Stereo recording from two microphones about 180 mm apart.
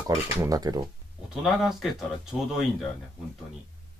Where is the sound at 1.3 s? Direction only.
Centre (ahead or behind).